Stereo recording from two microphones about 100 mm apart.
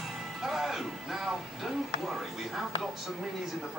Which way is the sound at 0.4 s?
Centre (ahead or behind).